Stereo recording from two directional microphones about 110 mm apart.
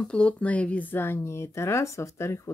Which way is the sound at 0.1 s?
10° left (ahead or behind).